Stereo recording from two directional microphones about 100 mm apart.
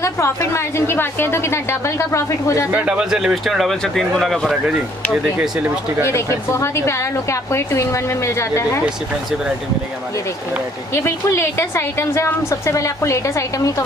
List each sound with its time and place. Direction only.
0.0 s a woman's voice: 30° left (ahead or behind)
2.7 s speech: 10° right (ahead or behind)
6.5 s a woman's voice: 25° left (ahead or behind)
10.9 s a woman's voice: 25° left (ahead or behind)